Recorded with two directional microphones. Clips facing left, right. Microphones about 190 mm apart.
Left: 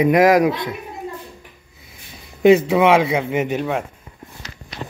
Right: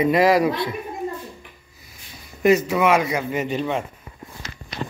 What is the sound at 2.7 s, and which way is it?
Speech, 25° left (ahead or behind).